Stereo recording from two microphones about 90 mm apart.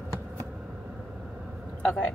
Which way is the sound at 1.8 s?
15° left (ahead or behind).